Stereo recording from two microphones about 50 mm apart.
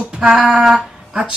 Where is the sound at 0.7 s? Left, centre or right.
Right.